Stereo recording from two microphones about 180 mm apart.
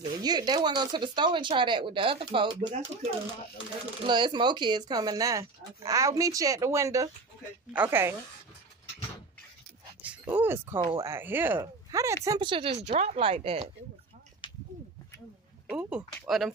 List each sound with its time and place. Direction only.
0.2 s speech: 25° right (ahead or behind)
10.0 s speech: 10° right (ahead or behind); by 13.7 s 35° right (ahead or behind)
15.7 s speech: 5° right (ahead or behind)